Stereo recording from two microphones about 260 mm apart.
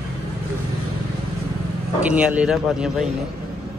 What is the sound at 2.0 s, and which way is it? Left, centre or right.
Speech, centre.